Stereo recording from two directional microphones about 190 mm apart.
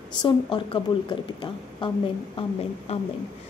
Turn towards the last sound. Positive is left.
turn(degrees=35)  # may be behind; listen again after turning